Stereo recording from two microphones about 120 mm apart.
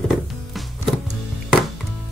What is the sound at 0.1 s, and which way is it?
Music, centre (ahead or behind).